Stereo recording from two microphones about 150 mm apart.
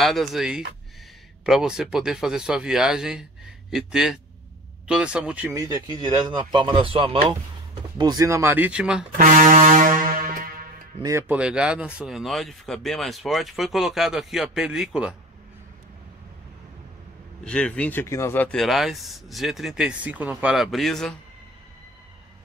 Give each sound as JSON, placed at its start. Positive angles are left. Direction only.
{"t": 0.0, "sound": "speech", "side_deg": 0}
{"t": 5.5, "sound": "speech", "side_deg": -20}
{"t": 8.0, "sound": "speech", "side_deg": -25}
{"t": 9.2, "sound": "brass instrument", "side_deg": -60}
{"t": 11.0, "sound": "speech", "side_deg": -20}
{"t": 11.3, "sound": "speech", "side_deg": -5}
{"t": 17.5, "sound": "speech", "side_deg": 5}